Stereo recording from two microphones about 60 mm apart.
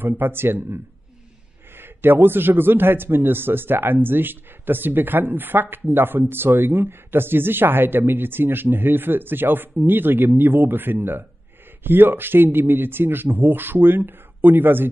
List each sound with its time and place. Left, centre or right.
0.0 s a man's voice: right
1.8 s a man's voice: right